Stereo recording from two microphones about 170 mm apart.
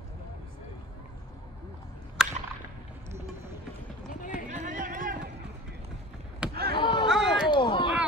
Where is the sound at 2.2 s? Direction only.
5° right (ahead or behind).